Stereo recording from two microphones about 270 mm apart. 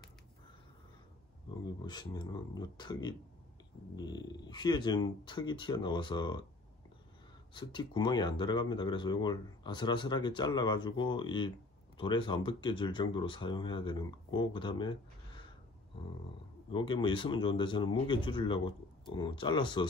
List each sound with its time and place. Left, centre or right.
1.9 s speech: centre
7.5 s speech: centre
16.7 s speech: centre